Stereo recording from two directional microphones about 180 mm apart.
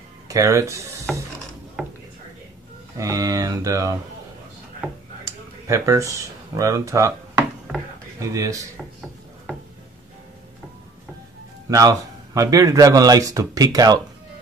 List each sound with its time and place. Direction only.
0.3 s speech: 20° right (ahead or behind)
1.8 s a sound: centre (ahead or behind)
3.0 s speech: 20° right (ahead or behind)
5.7 s speech: 20° right (ahead or behind)
8.2 s speech: 20° right (ahead or behind)
11.7 s speech: 20° right (ahead or behind)